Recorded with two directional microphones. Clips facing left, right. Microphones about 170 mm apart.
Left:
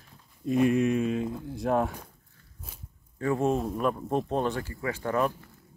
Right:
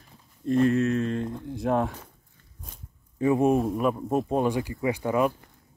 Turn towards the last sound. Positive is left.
turn(degrees=-10)  # may be behind; listen again after turning